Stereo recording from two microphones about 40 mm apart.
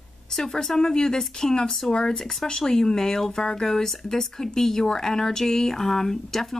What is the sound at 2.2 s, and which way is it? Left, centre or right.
Speech, centre.